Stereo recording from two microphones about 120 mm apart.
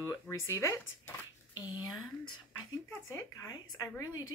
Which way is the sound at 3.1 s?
25° left (ahead or behind).